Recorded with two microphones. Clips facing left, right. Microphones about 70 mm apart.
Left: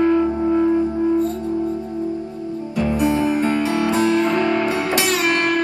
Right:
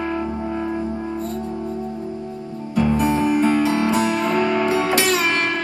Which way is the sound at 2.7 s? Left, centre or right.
Right.